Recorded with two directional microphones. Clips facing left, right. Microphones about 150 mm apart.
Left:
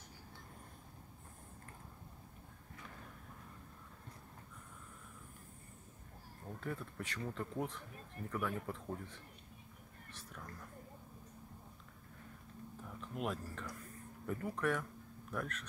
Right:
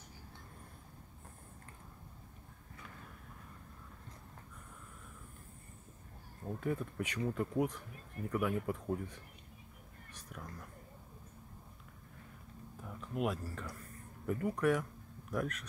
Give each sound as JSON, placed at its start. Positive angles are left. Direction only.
{"t": 6.6, "sound": "speech", "side_deg": -15}
{"t": 10.1, "sound": "a sound", "side_deg": -15}
{"t": 12.8, "sound": "speech", "side_deg": -5}